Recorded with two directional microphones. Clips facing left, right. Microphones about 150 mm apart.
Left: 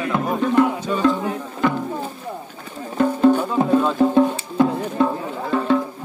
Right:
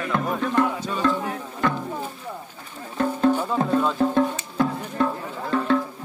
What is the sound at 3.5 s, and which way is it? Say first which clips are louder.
Music: left 4 dB; 10° left (ahead or behind).